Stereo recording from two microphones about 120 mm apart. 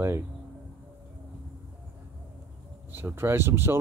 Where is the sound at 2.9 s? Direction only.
20° right (ahead or behind).